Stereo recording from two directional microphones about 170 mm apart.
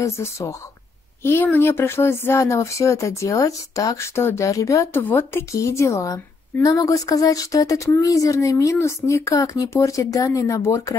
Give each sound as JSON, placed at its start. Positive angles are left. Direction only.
{"t": 0.0, "sound": "speech", "side_deg": 15}